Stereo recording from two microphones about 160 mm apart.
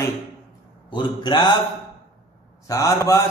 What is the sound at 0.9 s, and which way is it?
Speech, 30° left (ahead or behind).